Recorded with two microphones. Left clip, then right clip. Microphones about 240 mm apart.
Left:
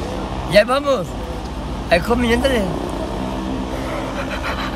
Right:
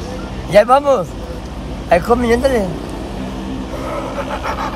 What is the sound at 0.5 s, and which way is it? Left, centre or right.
Speech, centre.